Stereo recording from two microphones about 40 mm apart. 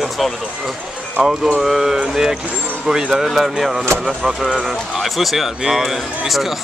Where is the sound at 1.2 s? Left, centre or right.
Centre.